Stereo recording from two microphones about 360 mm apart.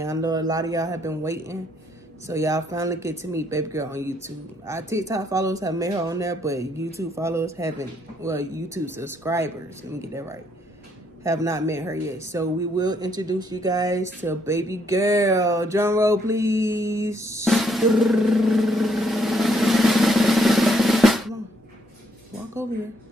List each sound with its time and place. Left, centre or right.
0.0 s speech: centre